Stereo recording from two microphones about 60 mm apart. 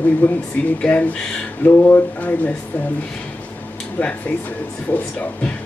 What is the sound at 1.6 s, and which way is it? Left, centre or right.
Speech, left.